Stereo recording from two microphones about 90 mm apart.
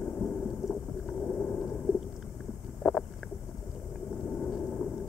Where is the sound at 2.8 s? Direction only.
Centre (ahead or behind).